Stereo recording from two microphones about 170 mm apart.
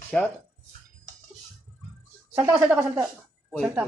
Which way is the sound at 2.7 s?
15° right (ahead or behind).